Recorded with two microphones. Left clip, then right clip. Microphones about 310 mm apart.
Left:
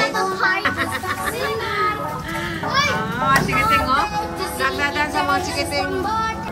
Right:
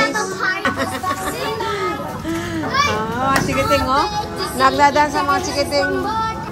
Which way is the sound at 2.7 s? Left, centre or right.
Centre.